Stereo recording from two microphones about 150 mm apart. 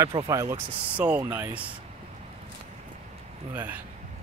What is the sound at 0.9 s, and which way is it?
Speech, 10° right (ahead or behind).